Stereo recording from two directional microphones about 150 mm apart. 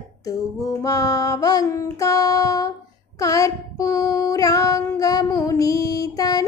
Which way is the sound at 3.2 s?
20° left (ahead or behind).